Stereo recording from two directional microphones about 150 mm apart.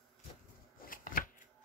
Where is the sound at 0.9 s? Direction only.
65° left (ahead or behind).